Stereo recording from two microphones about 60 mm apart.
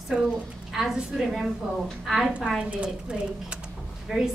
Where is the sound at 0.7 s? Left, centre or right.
Centre.